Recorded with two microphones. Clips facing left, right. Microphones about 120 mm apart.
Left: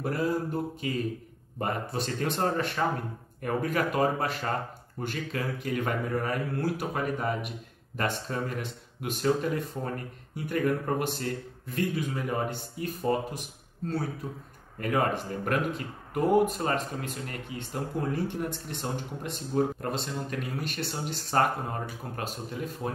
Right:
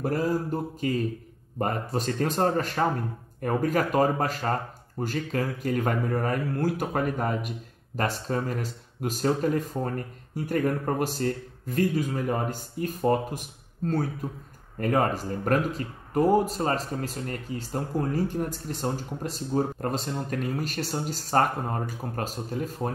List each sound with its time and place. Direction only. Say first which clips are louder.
0.0 s speech: right 2 dB; 40° right (ahead or behind)
14.8 s speech: right 3 dB; 40° right (ahead or behind)